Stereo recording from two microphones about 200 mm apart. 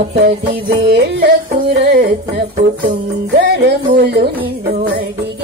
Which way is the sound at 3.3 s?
55° right (ahead or behind).